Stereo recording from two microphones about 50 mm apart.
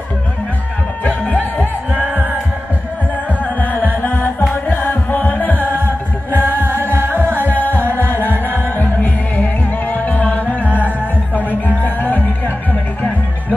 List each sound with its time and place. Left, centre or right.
1.0 s music: left
2.0 s music: right
3.4 s music: left
5.7 s music: right
7.5 s music: left